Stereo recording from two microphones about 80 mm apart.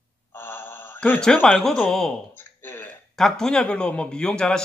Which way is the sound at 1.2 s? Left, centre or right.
Centre.